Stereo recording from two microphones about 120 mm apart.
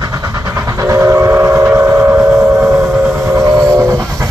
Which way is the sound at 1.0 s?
20° right (ahead or behind).